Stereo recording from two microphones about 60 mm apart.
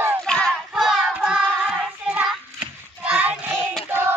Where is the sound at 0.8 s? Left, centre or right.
Centre.